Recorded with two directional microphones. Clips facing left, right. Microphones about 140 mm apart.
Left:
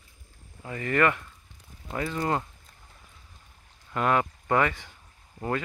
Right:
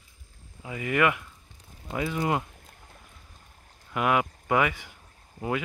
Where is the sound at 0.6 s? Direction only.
10° right (ahead or behind).